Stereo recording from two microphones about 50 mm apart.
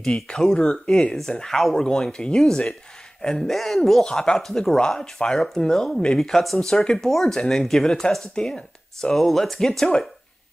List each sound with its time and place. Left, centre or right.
0.0 s speech: centre
1.9 s speech: centre
4.0 s speech: centre
4.4 s speech: centre
7.0 s speech: centre